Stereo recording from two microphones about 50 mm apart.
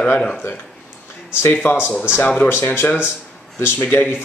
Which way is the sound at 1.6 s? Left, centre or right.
Left.